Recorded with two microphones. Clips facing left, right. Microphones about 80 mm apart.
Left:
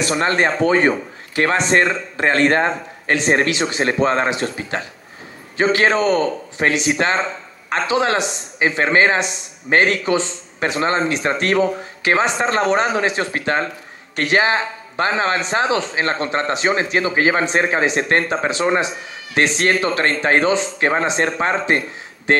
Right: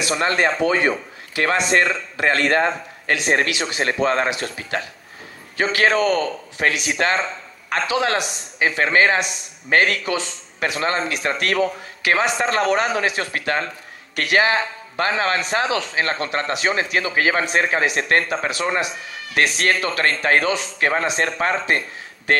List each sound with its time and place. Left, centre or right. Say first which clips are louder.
0.2 s a man's voice: left 1 dB; left